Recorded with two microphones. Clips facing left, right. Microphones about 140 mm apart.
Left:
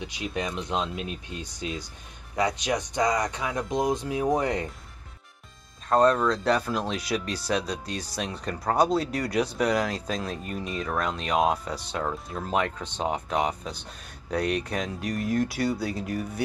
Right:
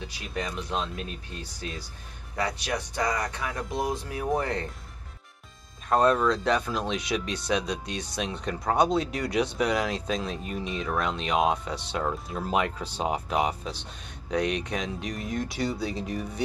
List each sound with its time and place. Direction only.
0.0 s speech: 20° left (ahead or behind)
5.9 s speech: centre (ahead or behind)